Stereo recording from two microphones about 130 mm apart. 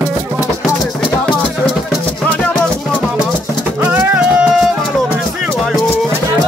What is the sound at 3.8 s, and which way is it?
Music, 10° right (ahead or behind).